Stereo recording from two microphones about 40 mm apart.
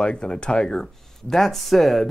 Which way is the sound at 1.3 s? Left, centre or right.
Centre.